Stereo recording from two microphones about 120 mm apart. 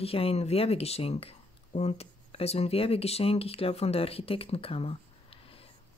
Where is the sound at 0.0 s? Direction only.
55° left (ahead or behind).